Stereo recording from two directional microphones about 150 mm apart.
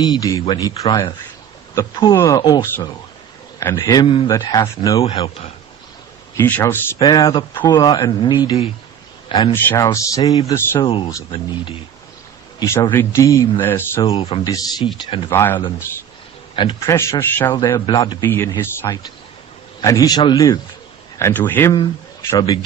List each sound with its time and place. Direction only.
0.0 s speech: 25° left (ahead or behind)
2.1 s speech: 25° left (ahead or behind)
5.0 s speech: 40° left (ahead or behind)
6.3 s speech: 15° left (ahead or behind)
9.5 s speech: 20° left (ahead or behind)
10.8 s speech: 35° left (ahead or behind)
12.5 s speech: 20° left (ahead or behind)
14.1 s speech: 30° left (ahead or behind)
15.3 s speech: 15° left (ahead or behind)
16.8 s speech: 20° left (ahead or behind)
17.5 s speech: 25° left (ahead or behind)
18.2 s speech: 15° left (ahead or behind)
21.2 s speech: 15° left (ahead or behind)
22.3 s speech: 25° left (ahead or behind)